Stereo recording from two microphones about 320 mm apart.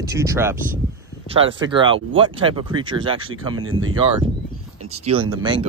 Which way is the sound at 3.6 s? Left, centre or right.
Right.